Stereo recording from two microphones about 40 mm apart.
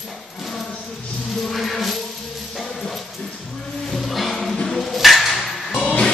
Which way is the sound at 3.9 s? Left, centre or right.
Centre.